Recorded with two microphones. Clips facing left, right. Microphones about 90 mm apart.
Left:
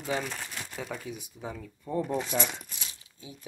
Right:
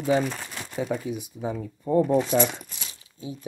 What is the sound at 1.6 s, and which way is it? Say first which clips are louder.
Speech: right 10 dB; 35° right (ahead or behind).